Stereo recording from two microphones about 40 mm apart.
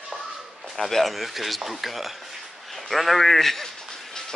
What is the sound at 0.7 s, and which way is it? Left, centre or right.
Speech, centre.